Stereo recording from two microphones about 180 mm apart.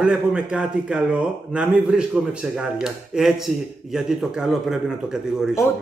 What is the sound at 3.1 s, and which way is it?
Speech, centre (ahead or behind).